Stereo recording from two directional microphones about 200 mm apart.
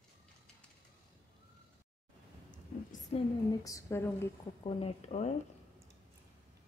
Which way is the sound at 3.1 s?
15° left (ahead or behind).